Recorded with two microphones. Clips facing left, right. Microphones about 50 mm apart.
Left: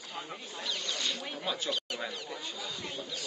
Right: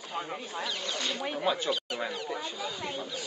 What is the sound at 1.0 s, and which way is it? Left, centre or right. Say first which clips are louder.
Speech: right 5 dB; centre.